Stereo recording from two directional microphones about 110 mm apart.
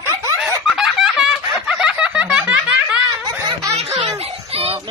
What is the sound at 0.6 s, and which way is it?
Snicker, 5° right (ahead or behind).